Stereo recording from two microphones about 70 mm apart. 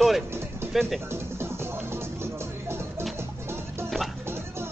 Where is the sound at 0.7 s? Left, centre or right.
Centre.